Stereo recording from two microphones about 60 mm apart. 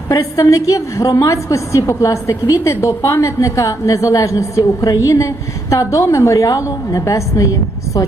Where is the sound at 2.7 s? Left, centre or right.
Left.